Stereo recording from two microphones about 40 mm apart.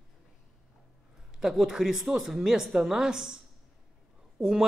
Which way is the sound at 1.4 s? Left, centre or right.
Centre.